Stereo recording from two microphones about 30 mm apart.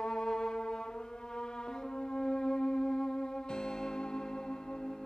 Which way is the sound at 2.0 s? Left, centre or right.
Left.